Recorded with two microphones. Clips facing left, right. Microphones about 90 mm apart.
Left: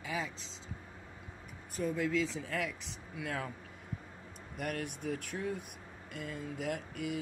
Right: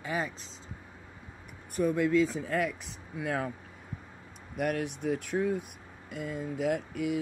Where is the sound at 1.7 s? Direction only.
65° right (ahead or behind).